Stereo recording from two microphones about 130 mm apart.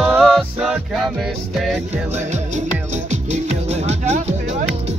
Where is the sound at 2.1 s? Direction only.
60° right (ahead or behind).